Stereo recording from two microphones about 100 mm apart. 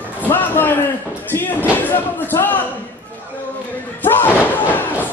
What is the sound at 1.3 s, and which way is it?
Speech, 20° left (ahead or behind).